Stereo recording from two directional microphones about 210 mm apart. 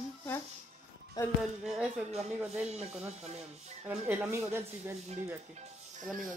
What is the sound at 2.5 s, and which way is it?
Speech, 30° right (ahead or behind).